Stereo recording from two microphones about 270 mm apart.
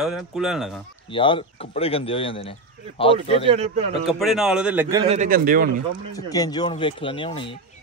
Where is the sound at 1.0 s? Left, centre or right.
Centre.